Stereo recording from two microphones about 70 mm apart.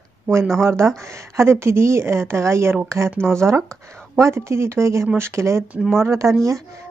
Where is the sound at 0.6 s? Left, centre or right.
Right.